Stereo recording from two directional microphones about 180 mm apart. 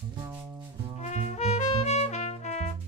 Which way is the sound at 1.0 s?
40° left (ahead or behind).